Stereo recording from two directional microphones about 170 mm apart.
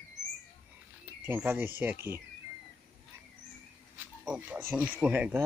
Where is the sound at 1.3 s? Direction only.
10° right (ahead or behind).